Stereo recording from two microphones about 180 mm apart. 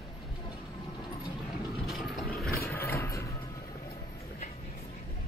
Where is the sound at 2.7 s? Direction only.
10° left (ahead or behind).